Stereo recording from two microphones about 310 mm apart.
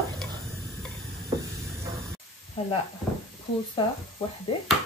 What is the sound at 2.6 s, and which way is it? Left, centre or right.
Speech, centre.